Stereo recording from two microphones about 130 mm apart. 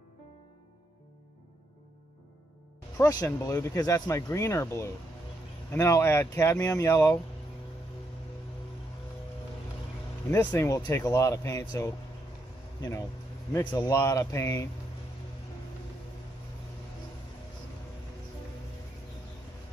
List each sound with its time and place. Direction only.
3.0 s speech: 25° left (ahead or behind)
10.3 s speech: 20° left (ahead or behind)
13.7 s speech: 25° left (ahead or behind)